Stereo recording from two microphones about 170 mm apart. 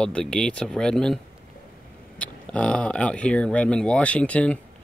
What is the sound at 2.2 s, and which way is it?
Speech, 5° left (ahead or behind).